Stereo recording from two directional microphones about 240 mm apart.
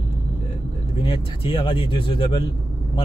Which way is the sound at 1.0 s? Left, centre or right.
Left.